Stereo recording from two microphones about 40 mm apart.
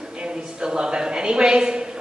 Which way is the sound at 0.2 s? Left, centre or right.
Right.